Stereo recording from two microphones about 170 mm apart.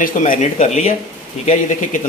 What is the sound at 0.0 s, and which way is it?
A man's voice, 50° left (ahead or behind).